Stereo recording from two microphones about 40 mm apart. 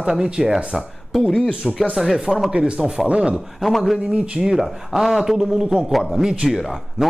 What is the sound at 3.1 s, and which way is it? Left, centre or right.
Speech, right.